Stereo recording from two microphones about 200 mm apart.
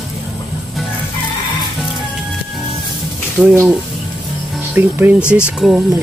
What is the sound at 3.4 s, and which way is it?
Speech, 10° right (ahead or behind).